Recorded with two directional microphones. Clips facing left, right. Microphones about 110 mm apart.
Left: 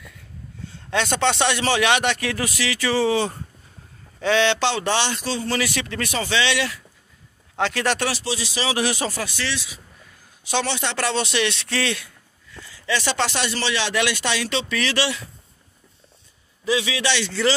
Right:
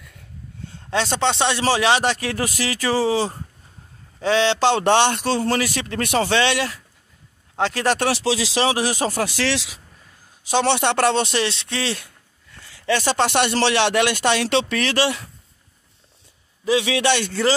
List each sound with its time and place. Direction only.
0.8 s speech: 30° right (ahead or behind)
4.6 s speech: 55° right (ahead or behind)
5.6 s speech: 45° right (ahead or behind)
8.1 s speech: 90° right
8.7 s speech: 40° right (ahead or behind)
9.2 s speech: 90° right
10.6 s speech: 60° right (ahead or behind)
11.4 s speech: 25° right (ahead or behind)
12.7 s speech: 50° right (ahead or behind)
16.6 s speech: 55° right (ahead or behind)